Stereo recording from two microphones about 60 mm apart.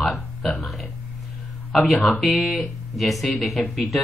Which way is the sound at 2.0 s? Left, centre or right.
Centre.